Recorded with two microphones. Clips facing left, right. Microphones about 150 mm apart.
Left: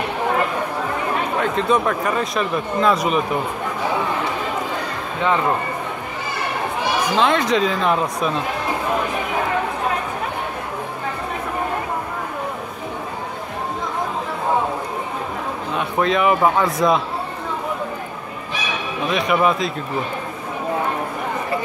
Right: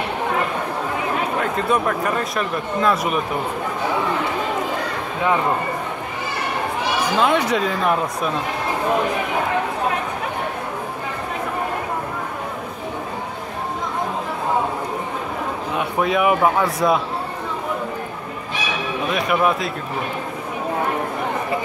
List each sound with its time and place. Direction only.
1.4 s speech: centre (ahead or behind)
7.2 s speech: 10° right (ahead or behind)
16.0 s speech: 10° right (ahead or behind)
19.1 s speech: 5° right (ahead or behind)